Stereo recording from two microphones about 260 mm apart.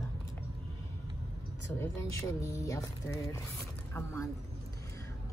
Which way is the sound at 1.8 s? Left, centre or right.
Centre.